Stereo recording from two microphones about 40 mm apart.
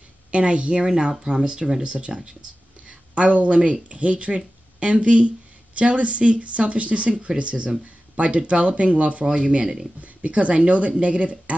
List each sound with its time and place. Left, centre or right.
0.3 s speech: right
9.2 s speech: centre
9.9 s speech: right